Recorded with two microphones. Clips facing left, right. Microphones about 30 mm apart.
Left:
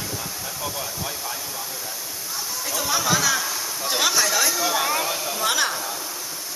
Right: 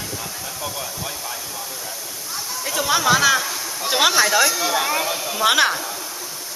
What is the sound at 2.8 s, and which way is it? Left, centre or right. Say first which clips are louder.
Speech: right 6 dB; right.